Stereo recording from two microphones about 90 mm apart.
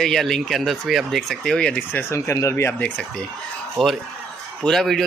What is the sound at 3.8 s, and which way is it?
Speech, 5° left (ahead or behind).